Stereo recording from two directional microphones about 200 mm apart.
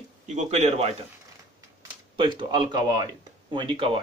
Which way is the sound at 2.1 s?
25° right (ahead or behind).